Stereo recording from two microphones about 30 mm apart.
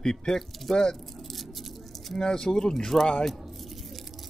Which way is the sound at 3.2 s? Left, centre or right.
Centre.